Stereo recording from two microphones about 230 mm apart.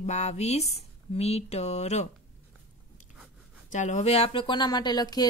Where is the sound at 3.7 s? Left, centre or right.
Left.